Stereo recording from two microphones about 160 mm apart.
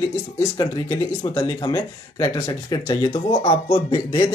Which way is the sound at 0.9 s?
25° left (ahead or behind).